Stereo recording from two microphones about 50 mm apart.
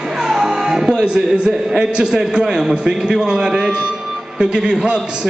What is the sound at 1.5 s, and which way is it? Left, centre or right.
A man's voice, centre.